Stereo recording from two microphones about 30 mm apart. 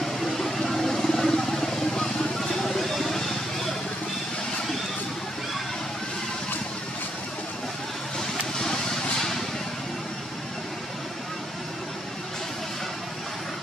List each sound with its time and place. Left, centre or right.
0.0 s vehicle: centre